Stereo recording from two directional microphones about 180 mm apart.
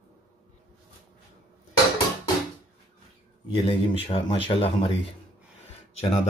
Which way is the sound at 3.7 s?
30° left (ahead or behind).